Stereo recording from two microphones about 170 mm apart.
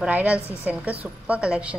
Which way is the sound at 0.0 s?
5° right (ahead or behind).